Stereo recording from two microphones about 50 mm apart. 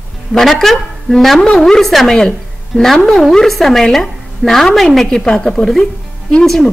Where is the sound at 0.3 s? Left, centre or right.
Centre.